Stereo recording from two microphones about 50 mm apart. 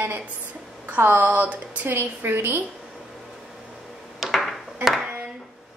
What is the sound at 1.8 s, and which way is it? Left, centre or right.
Speech, right.